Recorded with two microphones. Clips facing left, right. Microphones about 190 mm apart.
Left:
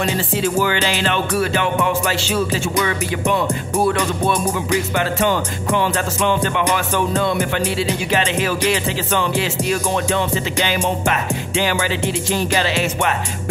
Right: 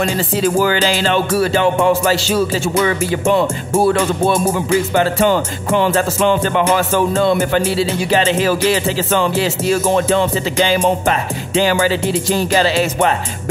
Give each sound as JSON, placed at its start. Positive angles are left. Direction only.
{"t": 0.6, "sound": "music", "side_deg": -35}